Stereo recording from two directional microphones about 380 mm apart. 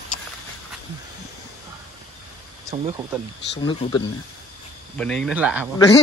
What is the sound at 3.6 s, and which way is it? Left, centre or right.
Speech, centre.